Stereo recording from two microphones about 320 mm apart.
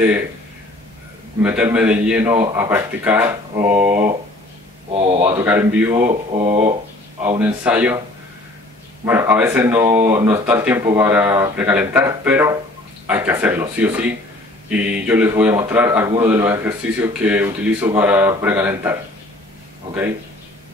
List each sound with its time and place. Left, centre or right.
1.4 s a man's voice: centre
4.9 s speech: centre
5.2 s a man's voice: centre
9.0 s a man's voice: centre